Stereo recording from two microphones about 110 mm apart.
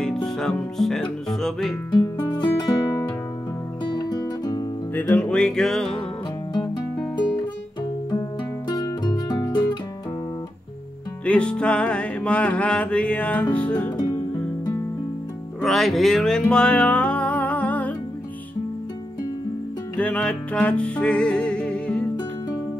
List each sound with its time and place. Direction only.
0.0 s music: 5° left (ahead or behind)
2.0 s music: 40° left (ahead or behind)
3.8 s music: 45° left (ahead or behind)
4.9 s music: 15° left (ahead or behind)
8.6 s music: 40° left (ahead or behind)
11.2 s music: 10° left (ahead or behind)
15.6 s music: centre (ahead or behind)
20.0 s music: 10° left (ahead or behind)